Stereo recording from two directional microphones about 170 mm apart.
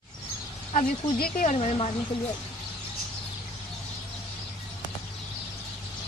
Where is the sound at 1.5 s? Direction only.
40° left (ahead or behind).